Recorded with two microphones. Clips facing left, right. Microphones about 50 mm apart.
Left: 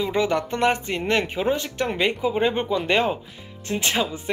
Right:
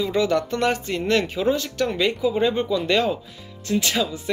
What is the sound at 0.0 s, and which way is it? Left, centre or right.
Speech, left.